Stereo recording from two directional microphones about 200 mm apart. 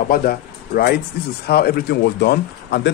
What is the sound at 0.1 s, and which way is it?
A man's voice, 50° left (ahead or behind).